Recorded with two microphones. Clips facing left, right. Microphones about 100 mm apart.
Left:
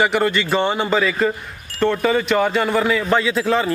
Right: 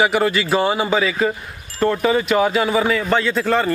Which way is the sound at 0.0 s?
5° right (ahead or behind).